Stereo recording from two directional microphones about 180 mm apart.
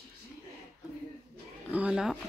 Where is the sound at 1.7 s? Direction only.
5° right (ahead or behind).